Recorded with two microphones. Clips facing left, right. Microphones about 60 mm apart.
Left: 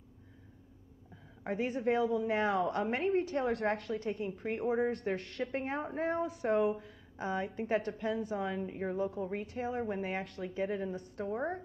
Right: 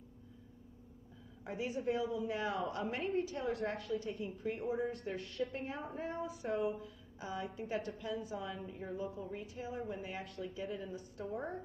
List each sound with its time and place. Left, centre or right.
1.4 s a woman's voice: left